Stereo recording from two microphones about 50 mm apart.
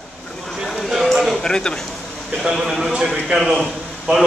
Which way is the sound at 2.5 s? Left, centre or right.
Centre.